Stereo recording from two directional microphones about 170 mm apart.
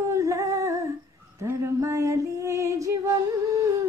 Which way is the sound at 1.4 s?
15° right (ahead or behind).